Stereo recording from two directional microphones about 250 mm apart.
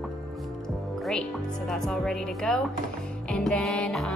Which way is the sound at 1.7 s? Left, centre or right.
Centre.